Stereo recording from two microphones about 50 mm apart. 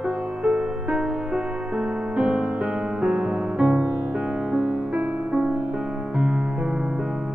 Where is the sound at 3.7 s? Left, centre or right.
Right.